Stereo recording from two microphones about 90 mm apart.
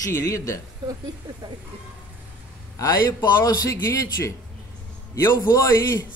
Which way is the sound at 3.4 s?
35° left (ahead or behind).